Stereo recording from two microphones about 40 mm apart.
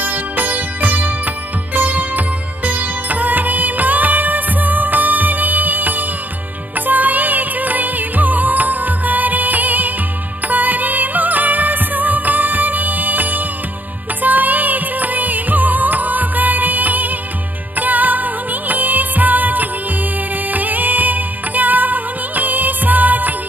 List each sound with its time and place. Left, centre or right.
0.0 s music: right